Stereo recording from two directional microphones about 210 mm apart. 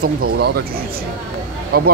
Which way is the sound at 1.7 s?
45° right (ahead or behind).